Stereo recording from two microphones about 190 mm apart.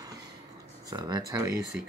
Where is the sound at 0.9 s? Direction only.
20° right (ahead or behind).